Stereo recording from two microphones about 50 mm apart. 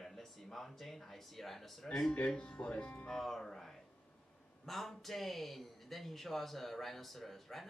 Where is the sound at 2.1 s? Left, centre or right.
Left.